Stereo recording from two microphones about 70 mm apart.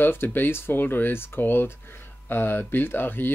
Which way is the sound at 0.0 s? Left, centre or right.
Left.